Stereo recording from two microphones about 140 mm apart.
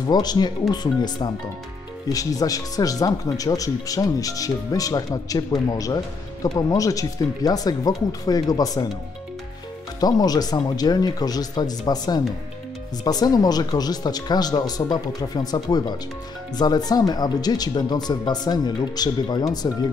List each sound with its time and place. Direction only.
0.0 s speech: 30° left (ahead or behind)
9.9 s speech: 25° left (ahead or behind)